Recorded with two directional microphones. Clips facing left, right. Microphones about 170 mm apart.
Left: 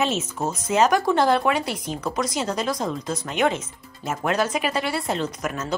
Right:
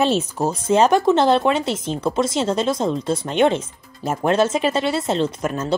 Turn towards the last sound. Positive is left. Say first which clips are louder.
# right 5 dB
turn(degrees=-30)  # may be behind; listen again after turning